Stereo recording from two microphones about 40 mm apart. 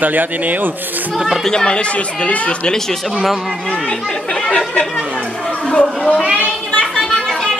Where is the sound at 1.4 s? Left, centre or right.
Left.